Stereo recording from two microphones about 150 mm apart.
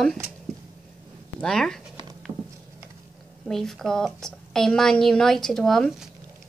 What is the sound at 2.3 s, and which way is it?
Patter, 35° right (ahead or behind).